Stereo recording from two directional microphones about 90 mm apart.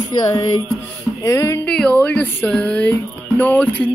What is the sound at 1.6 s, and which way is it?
Music, 10° left (ahead or behind).